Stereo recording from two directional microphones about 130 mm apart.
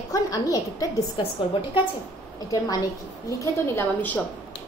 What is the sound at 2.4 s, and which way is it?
A woman's voice, 30° left (ahead or behind).